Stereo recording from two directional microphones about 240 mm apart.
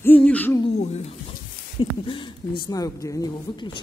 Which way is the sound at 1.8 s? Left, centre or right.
Left.